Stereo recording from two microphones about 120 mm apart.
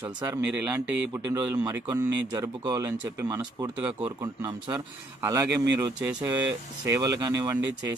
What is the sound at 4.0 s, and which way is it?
Speech, 45° right (ahead or behind).